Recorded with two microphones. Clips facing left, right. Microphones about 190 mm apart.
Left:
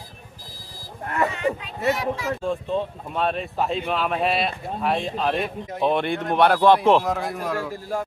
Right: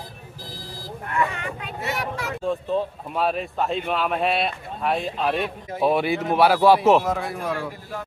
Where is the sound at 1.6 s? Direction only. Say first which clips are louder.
Left 5 dB; 65° right (ahead or behind).